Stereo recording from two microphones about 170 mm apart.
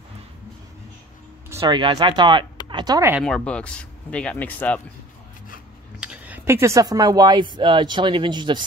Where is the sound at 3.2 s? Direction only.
5° left (ahead or behind).